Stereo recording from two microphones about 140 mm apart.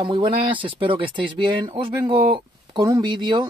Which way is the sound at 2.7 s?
25° right (ahead or behind).